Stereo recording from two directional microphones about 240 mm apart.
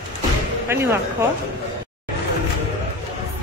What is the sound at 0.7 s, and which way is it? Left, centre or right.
Speech, centre.